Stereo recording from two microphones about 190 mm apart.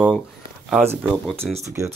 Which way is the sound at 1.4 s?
Centre (ahead or behind).